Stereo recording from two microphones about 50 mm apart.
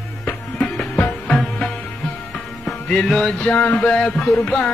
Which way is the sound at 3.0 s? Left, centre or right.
Centre.